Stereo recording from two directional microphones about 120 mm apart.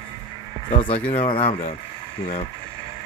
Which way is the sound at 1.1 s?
55° left (ahead or behind).